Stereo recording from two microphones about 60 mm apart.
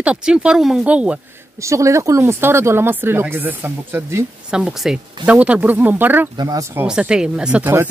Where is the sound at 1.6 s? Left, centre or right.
Right.